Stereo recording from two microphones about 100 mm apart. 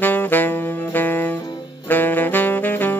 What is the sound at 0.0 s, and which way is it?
Saxophone, 20° left (ahead or behind).